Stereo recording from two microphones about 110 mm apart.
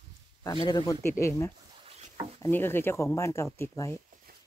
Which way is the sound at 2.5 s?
20° left (ahead or behind).